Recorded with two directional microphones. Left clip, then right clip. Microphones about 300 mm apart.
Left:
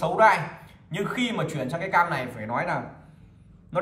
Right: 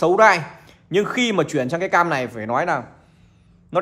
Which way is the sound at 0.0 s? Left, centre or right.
Right.